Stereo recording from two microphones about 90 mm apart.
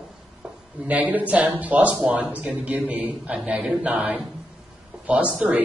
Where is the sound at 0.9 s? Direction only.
15° right (ahead or behind).